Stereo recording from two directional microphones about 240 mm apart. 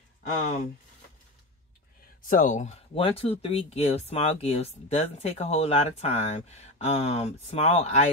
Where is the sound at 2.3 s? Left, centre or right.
Left.